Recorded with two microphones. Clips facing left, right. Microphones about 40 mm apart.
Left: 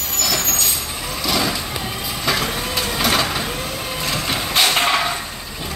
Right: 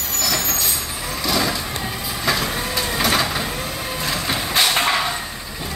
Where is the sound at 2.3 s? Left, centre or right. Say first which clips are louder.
Left 1 dB; centre.